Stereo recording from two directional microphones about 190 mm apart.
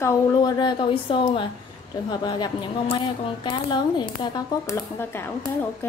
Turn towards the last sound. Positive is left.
turn(degrees=10)  # may be behind; listen again after turning